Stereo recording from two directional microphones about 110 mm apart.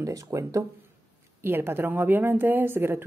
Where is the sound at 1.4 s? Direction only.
20° right (ahead or behind).